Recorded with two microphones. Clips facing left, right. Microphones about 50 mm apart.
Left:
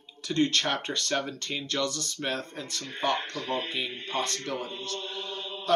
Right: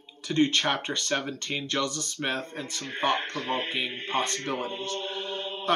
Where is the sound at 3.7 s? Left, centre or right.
Right.